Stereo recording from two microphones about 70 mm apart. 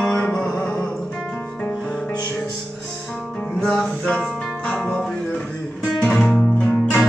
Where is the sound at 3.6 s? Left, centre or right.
Centre.